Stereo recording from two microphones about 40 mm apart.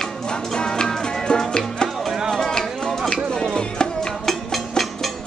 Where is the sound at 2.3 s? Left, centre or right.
Centre.